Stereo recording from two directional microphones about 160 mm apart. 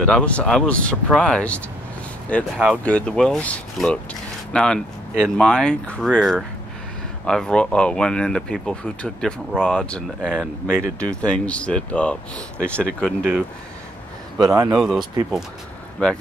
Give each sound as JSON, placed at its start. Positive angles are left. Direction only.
{"t": 0.0, "sound": "speech", "side_deg": 5}
{"t": 14.4, "sound": "speech", "side_deg": -20}
{"t": 14.7, "sound": "speech", "side_deg": -5}